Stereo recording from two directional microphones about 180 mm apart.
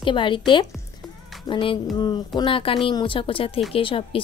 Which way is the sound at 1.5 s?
30° left (ahead or behind).